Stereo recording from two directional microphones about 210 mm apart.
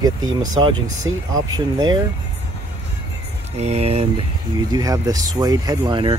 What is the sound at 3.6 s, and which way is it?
Speech, 30° right (ahead or behind).